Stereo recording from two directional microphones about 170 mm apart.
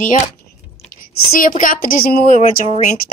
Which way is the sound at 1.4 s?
50° left (ahead or behind).